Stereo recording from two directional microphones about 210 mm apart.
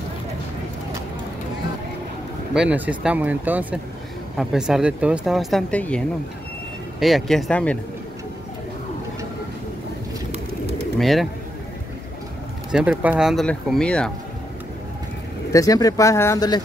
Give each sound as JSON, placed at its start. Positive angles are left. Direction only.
{"t": 2.5, "sound": "speech", "side_deg": -5}
{"t": 11.0, "sound": "speech", "side_deg": 0}
{"t": 12.7, "sound": "speech", "side_deg": -5}
{"t": 15.5, "sound": "speech", "side_deg": 15}